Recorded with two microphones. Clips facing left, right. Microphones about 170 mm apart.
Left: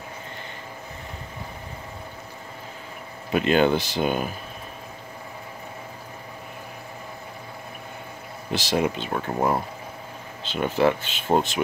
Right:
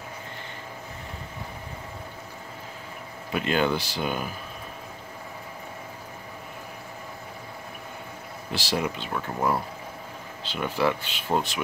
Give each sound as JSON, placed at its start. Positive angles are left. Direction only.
{"t": 3.3, "sound": "speech", "side_deg": 20}
{"t": 8.5, "sound": "speech", "side_deg": 20}